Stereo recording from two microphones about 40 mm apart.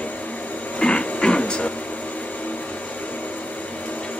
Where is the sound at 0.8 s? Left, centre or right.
Left.